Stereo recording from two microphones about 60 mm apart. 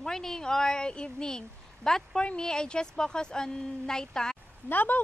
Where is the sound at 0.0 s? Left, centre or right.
Centre.